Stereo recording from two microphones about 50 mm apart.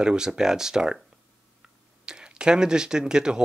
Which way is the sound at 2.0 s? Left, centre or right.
Centre.